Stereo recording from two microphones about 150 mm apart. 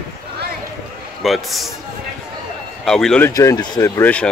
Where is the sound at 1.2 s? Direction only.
Centre (ahead or behind).